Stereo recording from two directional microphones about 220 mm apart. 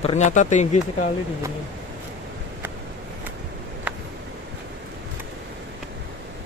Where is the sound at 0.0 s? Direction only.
30° left (ahead or behind).